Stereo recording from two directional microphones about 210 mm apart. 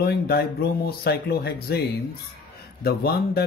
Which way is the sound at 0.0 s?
50° left (ahead or behind).